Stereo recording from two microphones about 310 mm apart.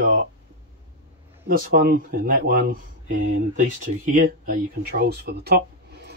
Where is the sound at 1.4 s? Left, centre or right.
Right.